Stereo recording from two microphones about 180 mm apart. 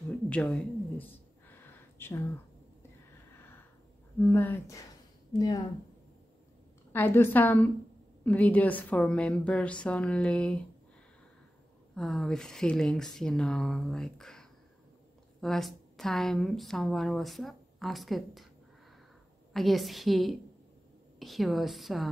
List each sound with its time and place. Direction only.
0.3 s a sound: 5° left (ahead or behind)
4.2 s a woman's voice: 10° left (ahead or behind)
6.9 s a woman's voice: 10° left (ahead or behind)
11.9 s a woman's voice: centre (ahead or behind)
19.5 s a woman's voice: centre (ahead or behind)